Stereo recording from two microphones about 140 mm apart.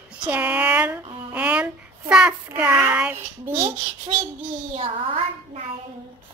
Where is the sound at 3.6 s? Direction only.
40° right (ahead or behind).